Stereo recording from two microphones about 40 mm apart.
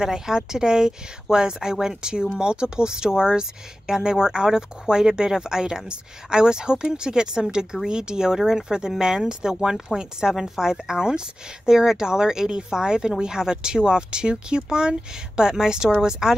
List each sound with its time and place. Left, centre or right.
0.0 s speech: centre